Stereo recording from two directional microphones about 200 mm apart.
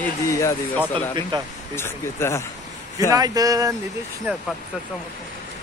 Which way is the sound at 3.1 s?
20° right (ahead or behind).